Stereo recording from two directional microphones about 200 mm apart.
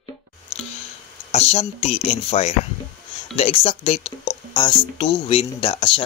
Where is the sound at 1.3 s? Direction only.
30° left (ahead or behind).